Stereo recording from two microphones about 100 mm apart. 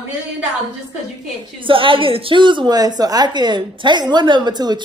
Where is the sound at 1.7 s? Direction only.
60° right (ahead or behind).